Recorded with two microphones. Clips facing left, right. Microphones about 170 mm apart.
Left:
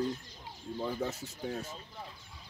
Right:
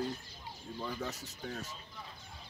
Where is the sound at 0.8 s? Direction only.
15° left (ahead or behind).